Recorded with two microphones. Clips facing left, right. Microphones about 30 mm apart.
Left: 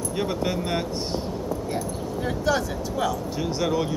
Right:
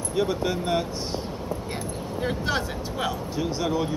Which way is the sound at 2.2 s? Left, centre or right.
Right.